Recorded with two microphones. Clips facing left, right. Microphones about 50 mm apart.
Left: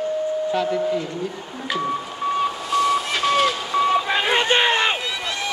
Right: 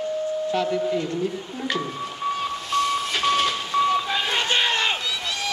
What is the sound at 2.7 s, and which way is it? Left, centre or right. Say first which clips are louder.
Vehicle: left 3 dB; centre.